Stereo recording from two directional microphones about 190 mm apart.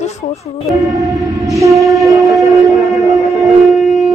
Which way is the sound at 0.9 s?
15° right (ahead or behind).